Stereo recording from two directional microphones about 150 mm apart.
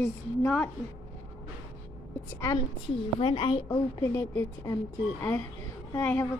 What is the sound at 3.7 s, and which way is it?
Speech, 25° left (ahead or behind).